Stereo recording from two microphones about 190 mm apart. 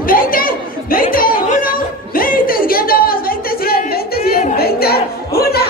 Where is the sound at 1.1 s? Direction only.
50° left (ahead or behind).